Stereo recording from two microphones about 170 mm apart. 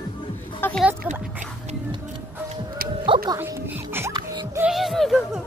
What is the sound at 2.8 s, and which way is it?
Music, 60° right (ahead or behind).